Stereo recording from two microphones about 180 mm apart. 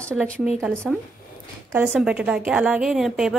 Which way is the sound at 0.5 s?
10° right (ahead or behind).